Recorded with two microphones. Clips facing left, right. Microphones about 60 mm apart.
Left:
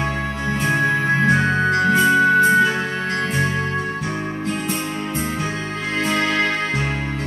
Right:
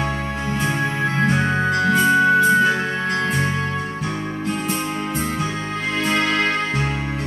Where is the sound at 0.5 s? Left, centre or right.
Left.